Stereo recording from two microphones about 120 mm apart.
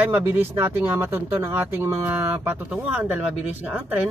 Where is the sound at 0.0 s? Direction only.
20° right (ahead or behind).